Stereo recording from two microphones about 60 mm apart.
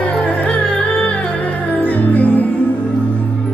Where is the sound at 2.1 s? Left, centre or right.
Left.